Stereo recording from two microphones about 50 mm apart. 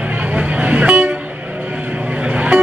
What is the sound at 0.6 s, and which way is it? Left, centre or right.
Vehicle, right.